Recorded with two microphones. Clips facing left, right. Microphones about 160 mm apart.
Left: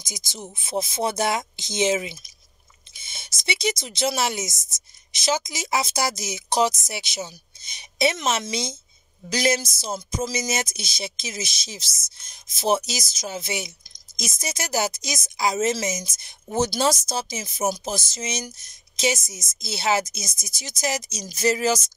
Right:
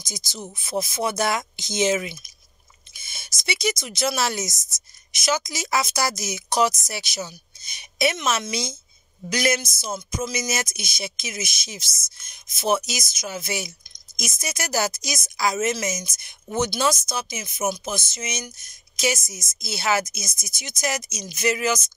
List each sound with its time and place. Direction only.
0.0 s a woman's voice: 20° left (ahead or behind)
2.9 s a sound: 25° left (ahead or behind)
3.4 s a woman's voice: 25° left (ahead or behind)